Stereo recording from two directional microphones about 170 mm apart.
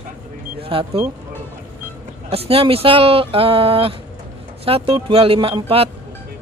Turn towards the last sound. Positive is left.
turn(degrees=-35)  # may be behind; listen again after turning